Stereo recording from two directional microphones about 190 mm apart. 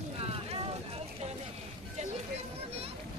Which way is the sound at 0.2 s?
30° right (ahead or behind).